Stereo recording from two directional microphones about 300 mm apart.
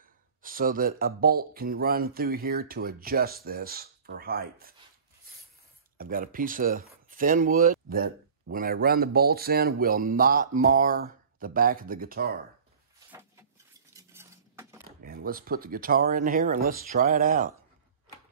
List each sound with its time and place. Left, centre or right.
0.4 s speech: right
5.9 s speech: right
13.9 s cutlery: centre
15.0 s speech: right